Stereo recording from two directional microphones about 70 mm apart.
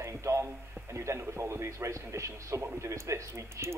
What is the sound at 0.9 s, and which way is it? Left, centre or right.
A man's voice, right.